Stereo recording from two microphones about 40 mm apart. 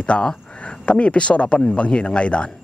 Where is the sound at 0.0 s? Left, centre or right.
Left.